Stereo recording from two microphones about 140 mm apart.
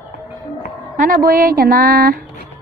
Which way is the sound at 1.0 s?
90° right.